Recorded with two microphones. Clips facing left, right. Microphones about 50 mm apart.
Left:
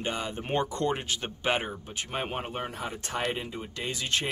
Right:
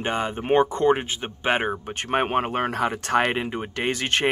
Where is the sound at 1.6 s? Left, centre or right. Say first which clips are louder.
Right 7 dB; right.